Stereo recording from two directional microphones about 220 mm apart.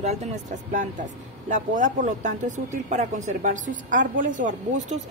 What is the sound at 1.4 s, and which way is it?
Speech, 35° right (ahead or behind).